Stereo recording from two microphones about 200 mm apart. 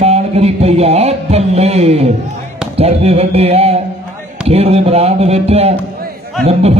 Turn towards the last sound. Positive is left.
turn(degrees=-30)  # may be behind; listen again after turning